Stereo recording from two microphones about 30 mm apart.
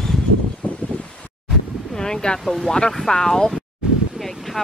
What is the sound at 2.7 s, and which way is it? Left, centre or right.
Speech, left.